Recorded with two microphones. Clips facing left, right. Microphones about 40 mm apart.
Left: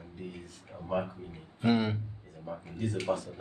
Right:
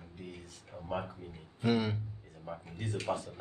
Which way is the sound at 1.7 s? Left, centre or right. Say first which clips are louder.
Left 3 dB; centre.